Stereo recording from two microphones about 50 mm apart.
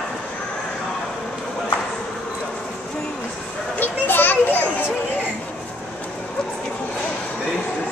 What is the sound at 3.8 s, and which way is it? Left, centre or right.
Children playing, left.